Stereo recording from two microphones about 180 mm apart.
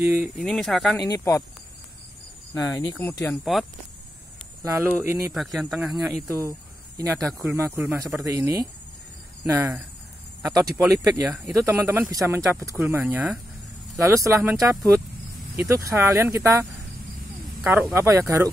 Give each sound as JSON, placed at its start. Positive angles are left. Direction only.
{"t": 0.0, "sound": "speech", "side_deg": -10}
{"t": 0.4, "sound": "speech", "side_deg": 0}
{"t": 0.9, "sound": "speech", "side_deg": 20}
{"t": 2.5, "sound": "speech", "side_deg": 15}
{"t": 3.5, "sound": "speech", "side_deg": 0}
{"t": 4.6, "sound": "speech", "side_deg": -15}
{"t": 5.4, "sound": "speech", "side_deg": 0}
{"t": 6.2, "sound": "speech", "side_deg": -20}
{"t": 7.2, "sound": "speech", "side_deg": 5}
{"t": 7.4, "sound": "speech", "side_deg": -15}
{"t": 11.2, "sound": "speech", "side_deg": -5}
{"t": 17.6, "sound": "speech", "side_deg": -10}